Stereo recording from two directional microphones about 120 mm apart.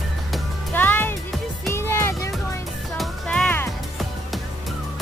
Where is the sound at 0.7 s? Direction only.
15° left (ahead or behind).